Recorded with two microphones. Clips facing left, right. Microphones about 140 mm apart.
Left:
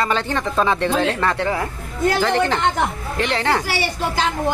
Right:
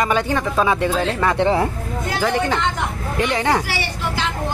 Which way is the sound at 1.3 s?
25° right (ahead or behind).